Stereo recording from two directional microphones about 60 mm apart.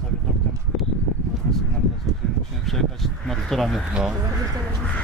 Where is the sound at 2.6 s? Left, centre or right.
Centre.